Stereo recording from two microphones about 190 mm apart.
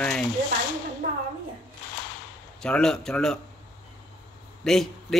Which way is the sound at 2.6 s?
5° left (ahead or behind).